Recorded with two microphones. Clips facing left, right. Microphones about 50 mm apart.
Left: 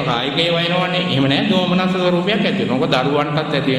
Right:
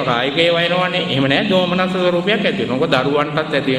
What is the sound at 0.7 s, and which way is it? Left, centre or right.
Speech, centre.